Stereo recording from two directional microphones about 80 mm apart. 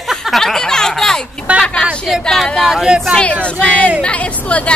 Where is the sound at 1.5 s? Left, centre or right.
Centre.